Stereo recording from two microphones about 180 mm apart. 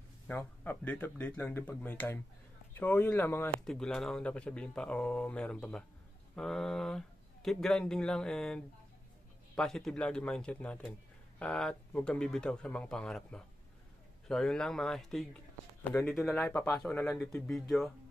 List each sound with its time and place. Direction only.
0.3 s speech: 10° left (ahead or behind)
3.6 s speech: 5° left (ahead or behind)